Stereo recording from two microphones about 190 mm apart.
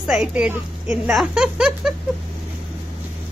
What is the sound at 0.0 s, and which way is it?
Speech, 5° right (ahead or behind).